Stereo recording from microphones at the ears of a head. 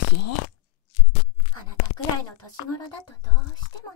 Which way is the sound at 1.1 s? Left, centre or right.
Left.